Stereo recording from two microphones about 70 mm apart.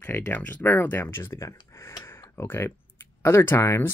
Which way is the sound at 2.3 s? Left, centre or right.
Left.